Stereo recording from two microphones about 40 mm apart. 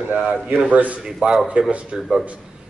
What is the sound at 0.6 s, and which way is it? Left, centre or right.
Speech, right.